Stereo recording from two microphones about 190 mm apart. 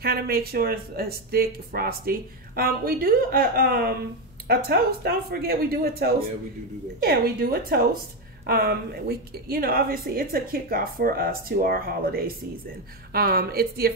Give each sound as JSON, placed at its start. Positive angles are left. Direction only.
{"t": 0.0, "sound": "speech", "side_deg": -55}